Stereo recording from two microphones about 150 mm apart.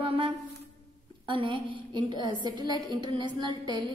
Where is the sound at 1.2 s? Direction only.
35° right (ahead or behind).